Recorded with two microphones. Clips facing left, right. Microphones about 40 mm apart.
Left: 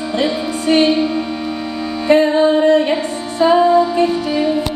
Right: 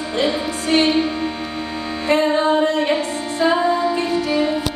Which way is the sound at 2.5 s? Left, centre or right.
Left.